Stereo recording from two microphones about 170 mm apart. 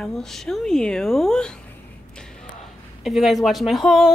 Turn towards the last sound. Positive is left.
turn(degrees=0)  # may be behind; listen again after turning